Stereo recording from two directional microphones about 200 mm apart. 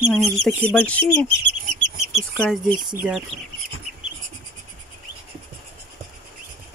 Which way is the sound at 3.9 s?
Centre (ahead or behind).